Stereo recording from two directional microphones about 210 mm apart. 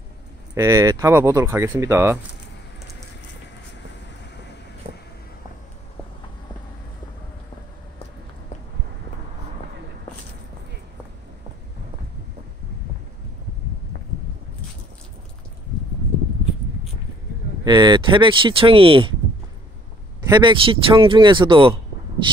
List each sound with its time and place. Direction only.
0.6 s speech: 15° right (ahead or behind)
17.6 s speech: 20° right (ahead or behind)
20.2 s speech: 20° right (ahead or behind)